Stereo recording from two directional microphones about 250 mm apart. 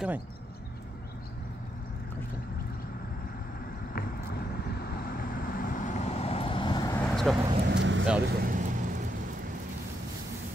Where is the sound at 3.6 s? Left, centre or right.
Left; by 7.0 s centre.